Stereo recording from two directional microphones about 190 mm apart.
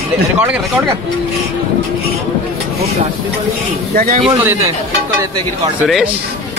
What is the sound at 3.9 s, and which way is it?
Speech, 45° right (ahead or behind).